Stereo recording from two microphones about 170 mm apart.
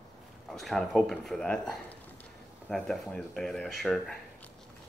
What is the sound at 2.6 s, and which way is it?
Speech, centre (ahead or behind).